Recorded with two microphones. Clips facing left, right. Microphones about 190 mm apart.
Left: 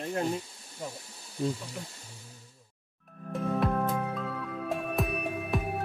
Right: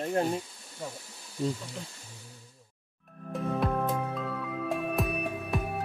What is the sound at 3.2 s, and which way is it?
Music, centre (ahead or behind).